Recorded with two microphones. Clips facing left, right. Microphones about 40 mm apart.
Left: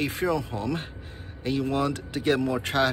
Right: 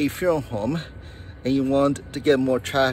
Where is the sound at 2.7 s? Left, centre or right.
Centre.